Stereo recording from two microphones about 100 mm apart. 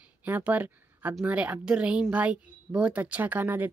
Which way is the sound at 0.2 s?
15° right (ahead or behind).